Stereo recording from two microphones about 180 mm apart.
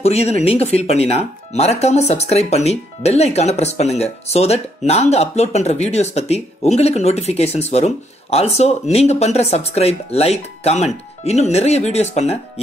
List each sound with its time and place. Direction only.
0.0 s speech: 35° left (ahead or behind)